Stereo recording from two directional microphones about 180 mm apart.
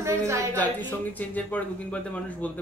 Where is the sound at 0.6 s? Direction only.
10° left (ahead or behind).